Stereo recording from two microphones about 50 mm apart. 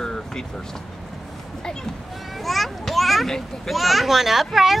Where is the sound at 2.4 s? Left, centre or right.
Centre.